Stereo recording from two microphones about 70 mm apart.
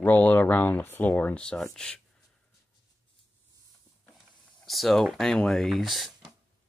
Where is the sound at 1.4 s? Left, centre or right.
Centre.